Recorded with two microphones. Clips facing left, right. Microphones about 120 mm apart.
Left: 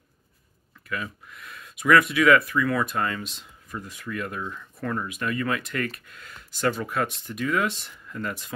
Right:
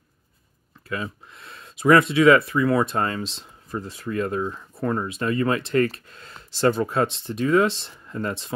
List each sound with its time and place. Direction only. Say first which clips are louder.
0.8 s speech: right 3 dB; 30° right (ahead or behind)